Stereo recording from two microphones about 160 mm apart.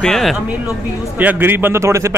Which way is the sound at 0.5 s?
10° right (ahead or behind).